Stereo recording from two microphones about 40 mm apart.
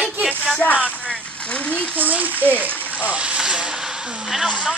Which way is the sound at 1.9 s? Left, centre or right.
Right.